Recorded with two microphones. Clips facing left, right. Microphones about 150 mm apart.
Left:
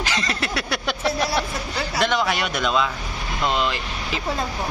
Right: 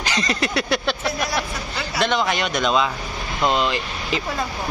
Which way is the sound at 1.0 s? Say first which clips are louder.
Left 2 dB; 30° left (ahead or behind).